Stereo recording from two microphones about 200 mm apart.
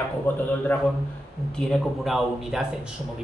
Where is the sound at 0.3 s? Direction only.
10° left (ahead or behind).